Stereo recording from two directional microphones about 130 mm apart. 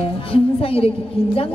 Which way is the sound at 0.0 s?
45° left (ahead or behind).